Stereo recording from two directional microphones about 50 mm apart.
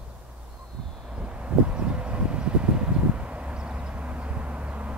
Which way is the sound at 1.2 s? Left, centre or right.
Right.